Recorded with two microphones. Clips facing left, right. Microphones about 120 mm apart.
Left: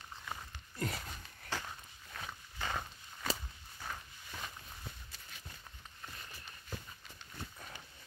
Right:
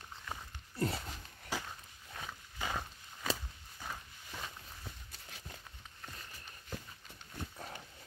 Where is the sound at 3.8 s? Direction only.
5° right (ahead or behind).